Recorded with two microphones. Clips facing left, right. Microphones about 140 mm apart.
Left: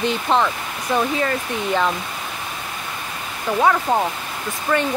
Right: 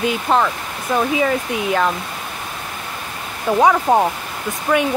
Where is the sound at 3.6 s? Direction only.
20° right (ahead or behind).